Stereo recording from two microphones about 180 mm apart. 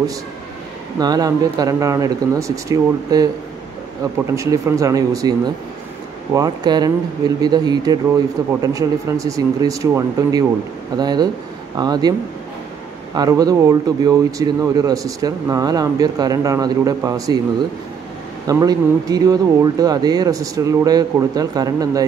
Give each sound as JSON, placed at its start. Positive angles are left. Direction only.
{"t": 0.9, "sound": "speech", "side_deg": -20}
{"t": 4.4, "sound": "speech", "side_deg": -20}
{"t": 18.5, "sound": "speech", "side_deg": -20}